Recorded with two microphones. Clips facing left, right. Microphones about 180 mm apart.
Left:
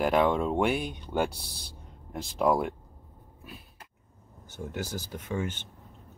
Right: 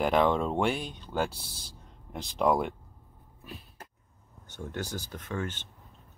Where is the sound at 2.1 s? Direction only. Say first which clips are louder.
Left 1 dB; centre (ahead or behind).